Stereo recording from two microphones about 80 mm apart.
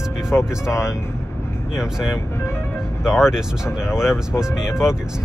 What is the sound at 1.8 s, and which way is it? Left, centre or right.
Speech, centre.